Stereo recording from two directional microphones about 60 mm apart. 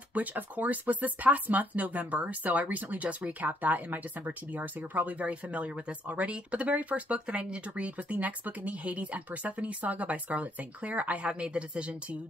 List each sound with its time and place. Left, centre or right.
0.1 s speech: right